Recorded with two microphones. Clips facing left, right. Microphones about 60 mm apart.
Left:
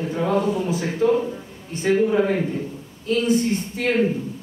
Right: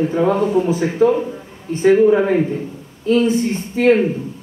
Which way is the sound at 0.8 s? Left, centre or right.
Centre.